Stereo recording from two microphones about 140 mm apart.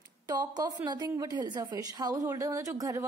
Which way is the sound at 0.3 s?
30° right (ahead or behind).